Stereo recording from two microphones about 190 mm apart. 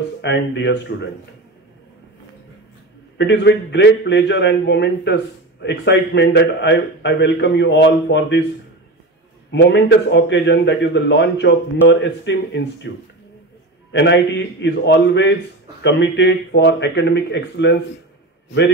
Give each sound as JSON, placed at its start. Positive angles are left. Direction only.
{"t": 0.2, "sound": "a man's voice", "side_deg": 70}
{"t": 3.2, "sound": "a man's voice", "side_deg": 65}
{"t": 9.5, "sound": "a man's voice", "side_deg": 65}
{"t": 13.9, "sound": "a man's voice", "side_deg": 70}